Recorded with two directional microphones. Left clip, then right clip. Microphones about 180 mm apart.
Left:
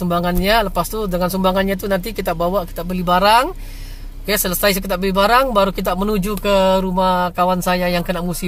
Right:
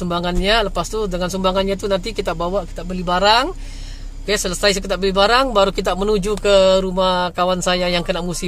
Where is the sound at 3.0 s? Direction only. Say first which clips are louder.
Left 2 dB; 10° left (ahead or behind).